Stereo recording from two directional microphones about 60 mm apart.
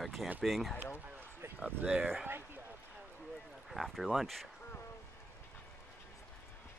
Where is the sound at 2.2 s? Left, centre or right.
Right.